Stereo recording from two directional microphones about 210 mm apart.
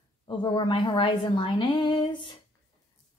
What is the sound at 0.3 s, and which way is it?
A woman's voice, 25° left (ahead or behind).